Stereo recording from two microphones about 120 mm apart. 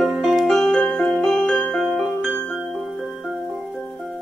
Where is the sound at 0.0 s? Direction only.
Centre (ahead or behind).